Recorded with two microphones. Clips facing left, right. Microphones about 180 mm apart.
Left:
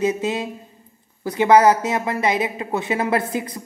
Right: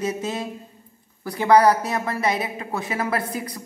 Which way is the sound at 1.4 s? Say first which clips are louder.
Left 2 dB; 20° left (ahead or behind).